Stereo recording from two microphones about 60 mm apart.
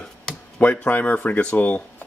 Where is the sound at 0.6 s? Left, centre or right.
Left.